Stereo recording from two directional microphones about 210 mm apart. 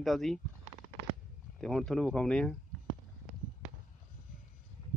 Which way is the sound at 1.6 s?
Centre (ahead or behind).